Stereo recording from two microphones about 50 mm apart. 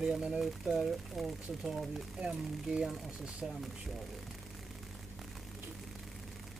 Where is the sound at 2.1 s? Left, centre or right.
Centre.